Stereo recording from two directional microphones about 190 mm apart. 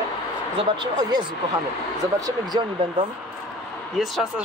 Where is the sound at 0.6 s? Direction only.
25° right (ahead or behind).